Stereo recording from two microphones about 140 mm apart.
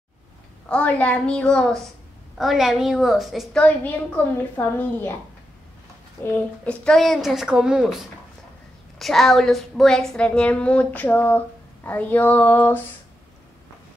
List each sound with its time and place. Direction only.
0.7 s a woman's voice: 10° left (ahead or behind)
3.6 s a woman's voice: 10° left (ahead or behind)
6.2 s a woman's voice: 10° left (ahead or behind)